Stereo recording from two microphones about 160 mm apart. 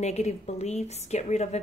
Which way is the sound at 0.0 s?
45° left (ahead or behind).